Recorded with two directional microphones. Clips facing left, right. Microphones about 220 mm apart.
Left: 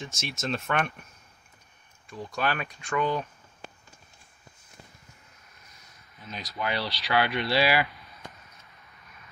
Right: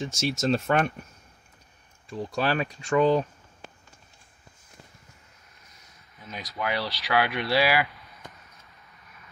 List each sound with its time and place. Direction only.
0.0 s speech: 35° right (ahead or behind)
2.0 s speech: 30° right (ahead or behind)
6.5 s speech: 10° right (ahead or behind)